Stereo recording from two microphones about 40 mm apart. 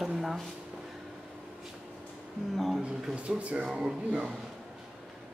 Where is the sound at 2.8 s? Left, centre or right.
Right.